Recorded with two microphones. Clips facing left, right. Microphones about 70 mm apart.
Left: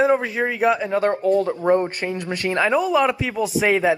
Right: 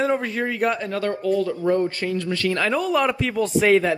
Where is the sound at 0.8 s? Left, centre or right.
Left.